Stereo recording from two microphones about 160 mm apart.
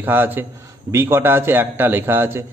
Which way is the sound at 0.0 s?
10° right (ahead or behind).